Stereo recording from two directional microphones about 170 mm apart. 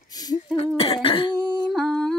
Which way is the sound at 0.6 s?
35° left (ahead or behind).